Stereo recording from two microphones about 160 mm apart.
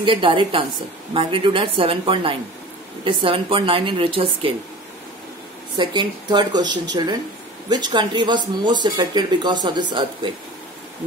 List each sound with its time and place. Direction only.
0.0 s a woman's voice: 30° right (ahead or behind)
5.8 s speech: 30° right (ahead or behind)